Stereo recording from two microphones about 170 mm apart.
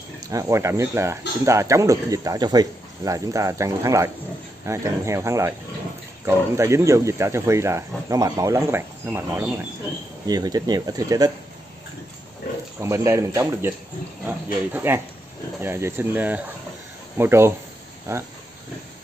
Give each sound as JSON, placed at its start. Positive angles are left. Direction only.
{"t": 0.3, "sound": "speech", "side_deg": -20}
{"t": 10.2, "sound": "speech", "side_deg": -25}
{"t": 12.8, "sound": "speech", "side_deg": -15}